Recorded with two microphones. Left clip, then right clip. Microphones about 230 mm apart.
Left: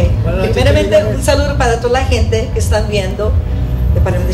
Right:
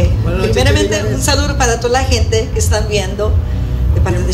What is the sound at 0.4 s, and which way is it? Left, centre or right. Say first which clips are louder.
A man's voice: left 1 dB; right.